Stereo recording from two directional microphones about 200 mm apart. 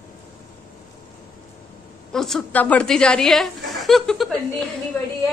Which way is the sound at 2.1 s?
Centre (ahead or behind).